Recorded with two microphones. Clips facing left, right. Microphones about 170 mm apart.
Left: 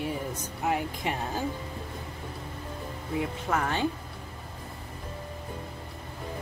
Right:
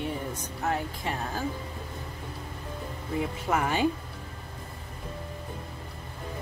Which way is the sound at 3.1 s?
5° right (ahead or behind).